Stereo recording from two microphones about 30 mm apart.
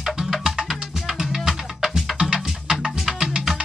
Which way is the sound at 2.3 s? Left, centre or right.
Right.